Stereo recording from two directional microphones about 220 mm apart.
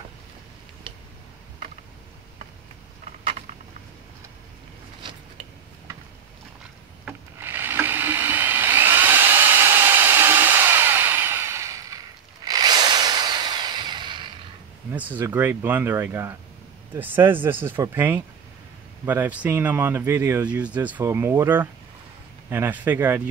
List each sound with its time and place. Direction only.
5.0 s mechanisms: 20° right (ahead or behind)
7.1 s a sound: 10° right (ahead or behind)
12.4 s drill: 20° right (ahead or behind)
14.9 s speech: 10° right (ahead or behind)